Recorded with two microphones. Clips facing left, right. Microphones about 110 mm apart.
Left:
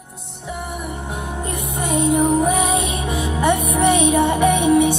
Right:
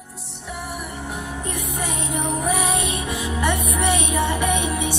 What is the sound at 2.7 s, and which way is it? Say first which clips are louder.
Music: left 4 dB; 20° left (ahead or behind).